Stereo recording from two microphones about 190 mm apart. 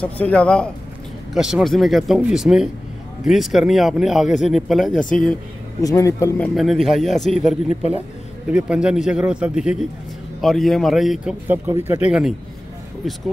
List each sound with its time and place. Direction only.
0.0 s speech: 5° left (ahead or behind)
5.8 s speech: 15° left (ahead or behind)
6.5 s speech: centre (ahead or behind)